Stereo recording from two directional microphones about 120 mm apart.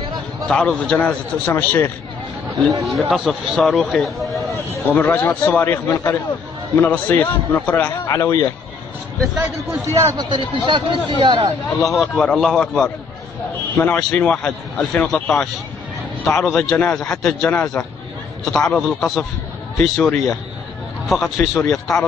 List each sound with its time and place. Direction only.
0.5 s a man's voice: 5° left (ahead or behind)
2.8 s speech: centre (ahead or behind)
4.5 s a man's voice: 15° left (ahead or behind)
8.1 s speech: 30° left (ahead or behind)
9.4 s a man's voice: 25° right (ahead or behind)
10.3 s speech: 45° right (ahead or behind)
12.0 s a man's voice: 5° left (ahead or behind)
20.0 s a man's voice: 15° left (ahead or behind)
21.1 s speech: centre (ahead or behind)